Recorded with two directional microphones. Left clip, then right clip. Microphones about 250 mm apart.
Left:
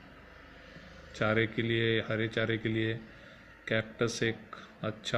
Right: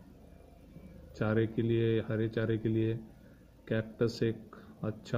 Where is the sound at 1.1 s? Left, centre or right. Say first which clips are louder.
Left 3 dB; centre.